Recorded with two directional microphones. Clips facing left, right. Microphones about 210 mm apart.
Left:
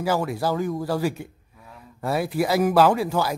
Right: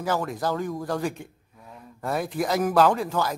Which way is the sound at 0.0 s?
10° left (ahead or behind).